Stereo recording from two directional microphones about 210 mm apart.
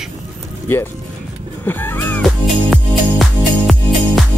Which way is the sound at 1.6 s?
10° left (ahead or behind).